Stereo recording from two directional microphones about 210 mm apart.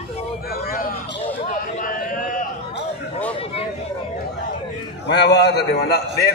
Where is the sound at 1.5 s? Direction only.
40° left (ahead or behind).